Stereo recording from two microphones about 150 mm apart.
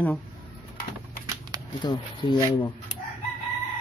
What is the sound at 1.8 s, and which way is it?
Speech, 30° left (ahead or behind).